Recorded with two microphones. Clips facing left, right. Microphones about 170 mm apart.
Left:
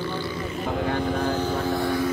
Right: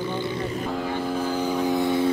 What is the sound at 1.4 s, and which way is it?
Vehicle, 15° right (ahead or behind).